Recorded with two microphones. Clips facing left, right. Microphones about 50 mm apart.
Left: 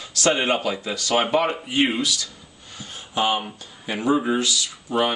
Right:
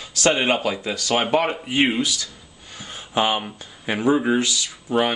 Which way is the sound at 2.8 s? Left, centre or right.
Right.